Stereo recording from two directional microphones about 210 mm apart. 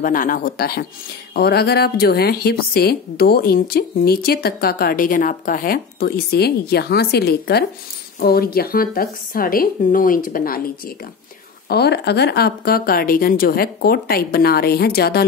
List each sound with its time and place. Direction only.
0.0 s a woman's voice: 40° left (ahead or behind)
11.7 s a woman's voice: 50° left (ahead or behind)